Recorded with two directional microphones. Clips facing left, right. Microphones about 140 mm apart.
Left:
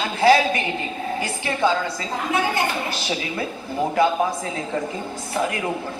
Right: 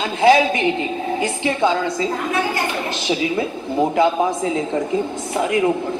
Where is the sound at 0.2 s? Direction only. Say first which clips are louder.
Right 3 dB; 20° right (ahead or behind).